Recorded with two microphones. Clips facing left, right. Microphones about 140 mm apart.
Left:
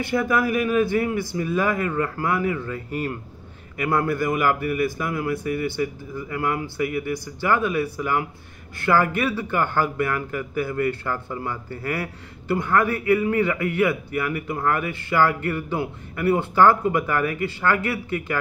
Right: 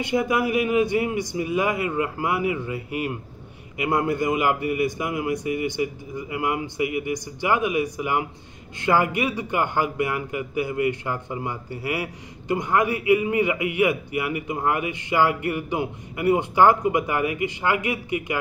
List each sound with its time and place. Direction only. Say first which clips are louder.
0.0 s speech: even; 20° right (ahead or behind)